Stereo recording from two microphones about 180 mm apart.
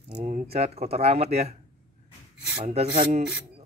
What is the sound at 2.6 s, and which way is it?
Speech, 40° right (ahead or behind).